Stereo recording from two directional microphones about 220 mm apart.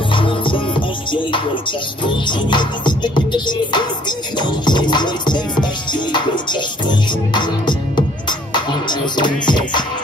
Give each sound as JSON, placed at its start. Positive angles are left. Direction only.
{"t": 0.1, "sound": "music", "side_deg": 20}